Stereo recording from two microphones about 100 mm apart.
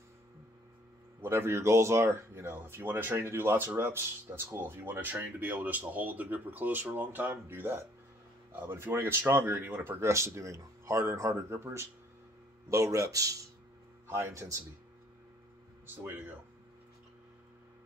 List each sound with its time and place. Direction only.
1.2 s speech: 25° right (ahead or behind)
15.9 s speech: 20° right (ahead or behind)